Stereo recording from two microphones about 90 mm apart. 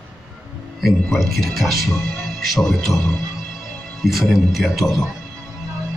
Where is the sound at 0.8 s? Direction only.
Centre (ahead or behind).